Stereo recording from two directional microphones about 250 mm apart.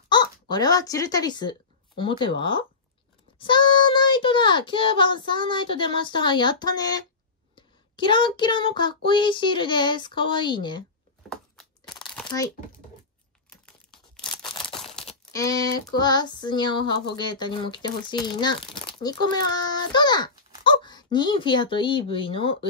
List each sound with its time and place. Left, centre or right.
0.1 s a child's voice: centre
14.2 s a sound: centre
14.8 s crumpling: centre
15.3 s female singing: centre
19.3 s a child's voice: centre